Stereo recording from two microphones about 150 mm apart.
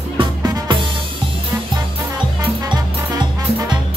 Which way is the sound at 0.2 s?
30° right (ahead or behind).